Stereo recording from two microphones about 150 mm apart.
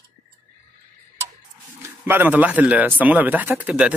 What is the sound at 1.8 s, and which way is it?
A man's voice, 15° right (ahead or behind).